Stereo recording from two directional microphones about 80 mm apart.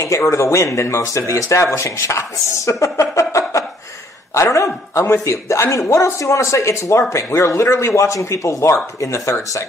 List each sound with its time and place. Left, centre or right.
0.0 s speech: left